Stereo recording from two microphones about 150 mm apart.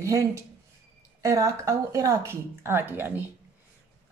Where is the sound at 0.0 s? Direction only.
20° right (ahead or behind).